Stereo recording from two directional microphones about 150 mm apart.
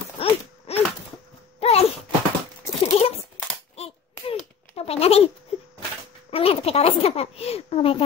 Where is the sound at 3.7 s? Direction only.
45° left (ahead or behind).